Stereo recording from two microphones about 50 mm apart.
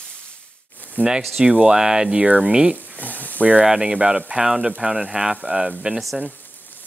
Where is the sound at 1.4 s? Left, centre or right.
Centre.